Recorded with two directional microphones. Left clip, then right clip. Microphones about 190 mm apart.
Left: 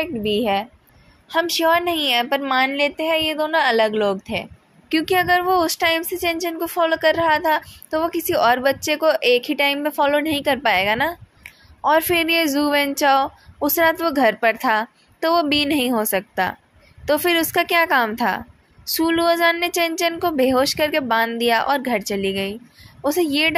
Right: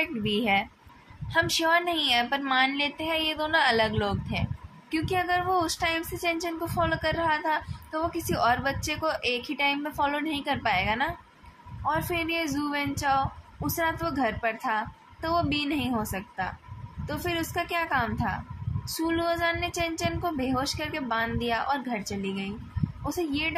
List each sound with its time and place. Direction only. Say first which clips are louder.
0.0 s a woman's voice: left 7 dB; 30° left (ahead or behind); by 23.5 s 50° left (ahead or behind)